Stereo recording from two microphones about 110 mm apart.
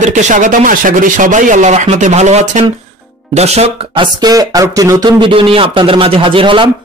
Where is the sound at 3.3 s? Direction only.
75° right (ahead or behind).